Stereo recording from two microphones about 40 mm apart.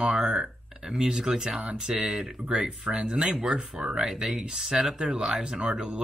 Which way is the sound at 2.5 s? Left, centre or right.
Right.